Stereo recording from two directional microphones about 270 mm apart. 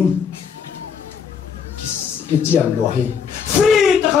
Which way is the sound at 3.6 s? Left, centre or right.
Centre.